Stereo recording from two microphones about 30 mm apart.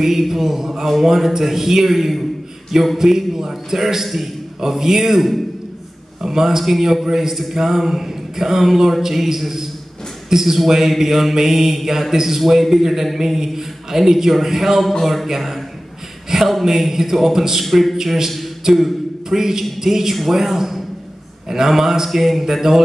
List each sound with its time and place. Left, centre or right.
0.0 s speech: centre
0.8 s speech: centre
1.1 s a man's voice: centre
14.8 s speech: centre
15.2 s a man's voice: centre
17.6 s speech: centre
17.9 s speech: centre
19.2 s speech: centre